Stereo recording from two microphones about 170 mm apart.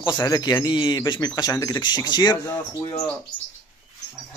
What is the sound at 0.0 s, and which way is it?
Speech, 25° left (ahead or behind).